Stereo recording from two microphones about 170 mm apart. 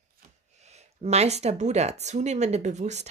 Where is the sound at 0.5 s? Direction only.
40° right (ahead or behind).